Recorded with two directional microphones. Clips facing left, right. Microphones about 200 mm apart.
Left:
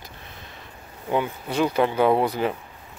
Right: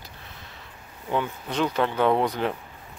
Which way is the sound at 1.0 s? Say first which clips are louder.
Left 3 dB; 10° left (ahead or behind).